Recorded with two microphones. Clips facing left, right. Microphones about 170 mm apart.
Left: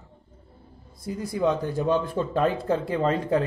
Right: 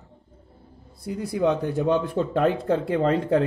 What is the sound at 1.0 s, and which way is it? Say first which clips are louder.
Speech: right 2 dB; 65° right (ahead or behind).